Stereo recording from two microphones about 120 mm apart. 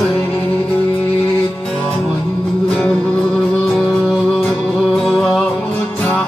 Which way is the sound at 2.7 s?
5° left (ahead or behind).